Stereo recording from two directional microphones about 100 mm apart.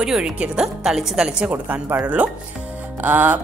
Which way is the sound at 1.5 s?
20° right (ahead or behind).